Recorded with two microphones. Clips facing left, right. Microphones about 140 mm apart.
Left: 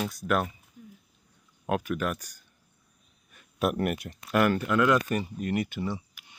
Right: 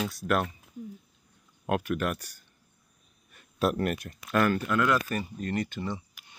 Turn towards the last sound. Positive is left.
turn(degrees=10)  # may be behind; listen again after turning